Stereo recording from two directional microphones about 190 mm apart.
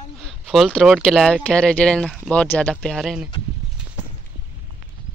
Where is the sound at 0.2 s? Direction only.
Centre (ahead or behind).